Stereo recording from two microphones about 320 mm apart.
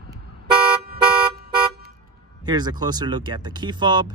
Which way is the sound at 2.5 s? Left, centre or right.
Centre.